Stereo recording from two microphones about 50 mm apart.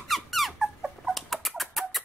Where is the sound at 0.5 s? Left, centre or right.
Centre.